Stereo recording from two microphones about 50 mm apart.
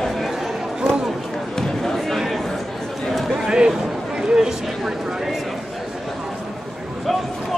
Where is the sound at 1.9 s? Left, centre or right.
Centre.